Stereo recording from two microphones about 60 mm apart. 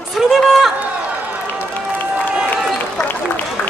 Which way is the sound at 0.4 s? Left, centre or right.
Centre.